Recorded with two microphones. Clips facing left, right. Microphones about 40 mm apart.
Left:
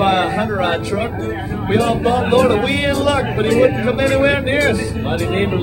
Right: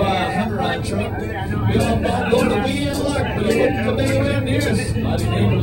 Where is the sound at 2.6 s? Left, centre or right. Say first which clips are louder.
Left 5 dB; left.